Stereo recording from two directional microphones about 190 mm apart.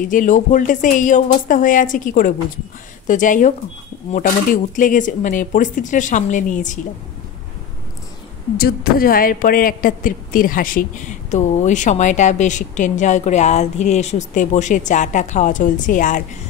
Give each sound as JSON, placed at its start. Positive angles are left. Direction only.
{"t": 0.1, "sound": "speech", "side_deg": 45}
{"t": 4.7, "sound": "speech", "side_deg": 45}
{"t": 8.5, "sound": "speech", "side_deg": 50}